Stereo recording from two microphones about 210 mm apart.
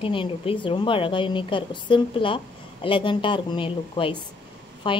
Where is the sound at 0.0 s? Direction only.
25° left (ahead or behind).